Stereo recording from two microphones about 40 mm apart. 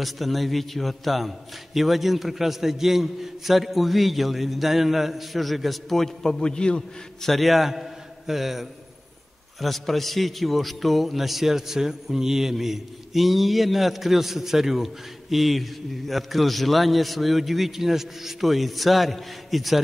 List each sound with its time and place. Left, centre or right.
0.0 s a man's voice: centre
6.4 s a man's voice: left
7.2 s a man's voice: centre
9.6 s a man's voice: centre